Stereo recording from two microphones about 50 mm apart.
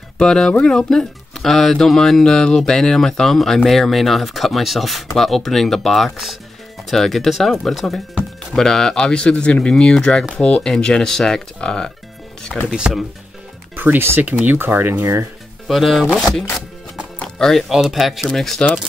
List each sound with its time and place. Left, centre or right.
0.2 s speech: centre
12.5 s speech: centre
13.9 s speech: right
14.2 s speech: right
15.7 s speech: centre
17.4 s speech: centre
17.6 s speech: centre